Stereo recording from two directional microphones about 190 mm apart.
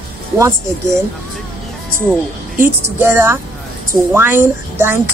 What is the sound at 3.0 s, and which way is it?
Speech, 10° right (ahead or behind).